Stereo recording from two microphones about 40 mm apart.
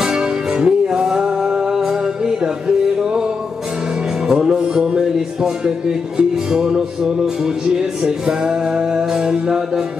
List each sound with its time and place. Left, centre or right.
0.0 s music: centre
4.3 s music: centre